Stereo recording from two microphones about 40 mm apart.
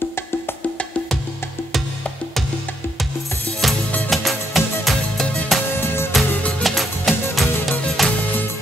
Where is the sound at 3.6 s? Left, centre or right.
Centre.